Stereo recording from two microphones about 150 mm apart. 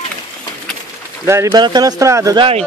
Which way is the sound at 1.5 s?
30° right (ahead or behind).